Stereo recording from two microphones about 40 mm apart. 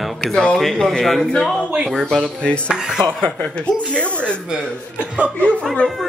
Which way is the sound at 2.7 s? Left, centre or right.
Centre.